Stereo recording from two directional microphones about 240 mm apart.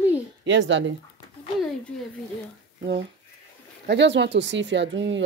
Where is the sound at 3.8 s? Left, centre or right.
Right.